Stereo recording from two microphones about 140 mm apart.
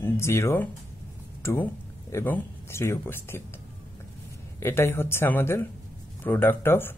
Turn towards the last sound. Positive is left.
turn(degrees=15)  # may be behind; listen again after turning